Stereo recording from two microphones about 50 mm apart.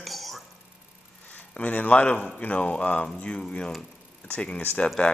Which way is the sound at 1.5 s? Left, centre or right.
Left.